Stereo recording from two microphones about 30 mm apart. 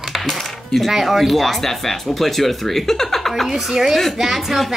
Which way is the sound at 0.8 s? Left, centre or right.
Centre.